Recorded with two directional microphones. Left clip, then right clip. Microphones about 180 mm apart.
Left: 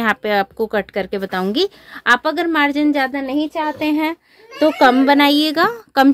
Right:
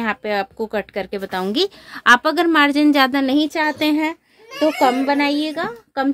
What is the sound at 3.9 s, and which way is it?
Speech, 25° right (ahead or behind).